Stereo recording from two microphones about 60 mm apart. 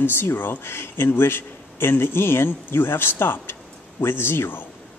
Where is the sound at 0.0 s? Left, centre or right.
Left.